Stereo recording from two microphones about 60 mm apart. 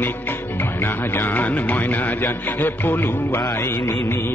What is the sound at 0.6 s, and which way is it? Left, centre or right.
A man's voice, left.